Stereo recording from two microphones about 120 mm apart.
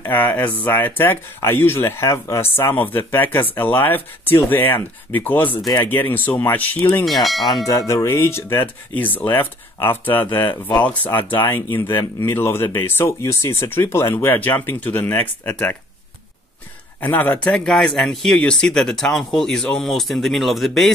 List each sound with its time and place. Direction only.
0.0 s speech: 15° left (ahead or behind)
7.1 s speech: centre (ahead or behind)
7.6 s speech: 25° left (ahead or behind)
17.0 s speech: 15° left (ahead or behind)